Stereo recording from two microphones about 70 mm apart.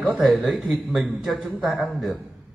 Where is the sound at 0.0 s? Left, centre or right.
Centre.